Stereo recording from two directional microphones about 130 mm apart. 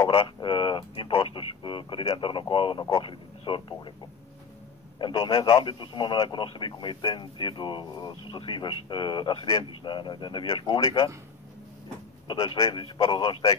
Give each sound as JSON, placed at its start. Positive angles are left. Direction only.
{"t": 0.1, "sound": "speech", "side_deg": 45}
{"t": 4.9, "sound": "a man's voice", "side_deg": 40}
{"t": 5.3, "sound": "speech", "side_deg": 25}
{"t": 5.6, "sound": "speech", "side_deg": 40}
{"t": 12.5, "sound": "speech", "side_deg": 25}
{"t": 13.1, "sound": "speech", "side_deg": 40}